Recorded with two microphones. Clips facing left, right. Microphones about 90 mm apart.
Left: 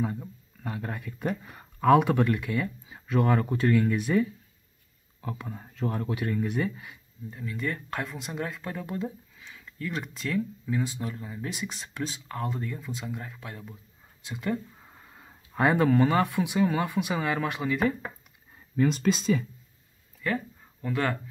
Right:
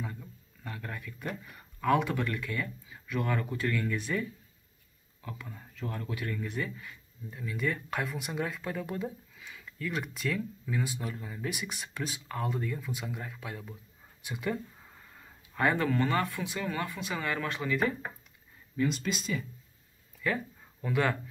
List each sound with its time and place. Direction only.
0.0 s speech: 30° left (ahead or behind)
2.0 s speech: 20° left (ahead or behind)
3.1 s speech: 35° left (ahead or behind)
5.5 s speech: 35° left (ahead or behind)
6.4 s speech: 15° left (ahead or behind)
7.2 s speech: centre (ahead or behind)
11.4 s speech: 10° right (ahead or behind)
15.6 s speech: 15° left (ahead or behind)
18.8 s speech: 35° left (ahead or behind)
20.8 s speech: 5° right (ahead or behind)